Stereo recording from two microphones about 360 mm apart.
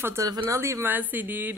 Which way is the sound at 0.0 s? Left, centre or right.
Centre.